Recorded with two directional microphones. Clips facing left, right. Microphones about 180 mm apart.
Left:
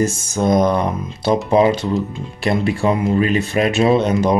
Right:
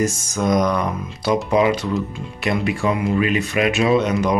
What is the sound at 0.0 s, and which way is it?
Speech, 30° left (ahead or behind).